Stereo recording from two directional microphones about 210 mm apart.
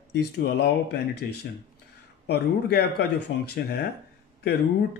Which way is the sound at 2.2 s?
50° left (ahead or behind).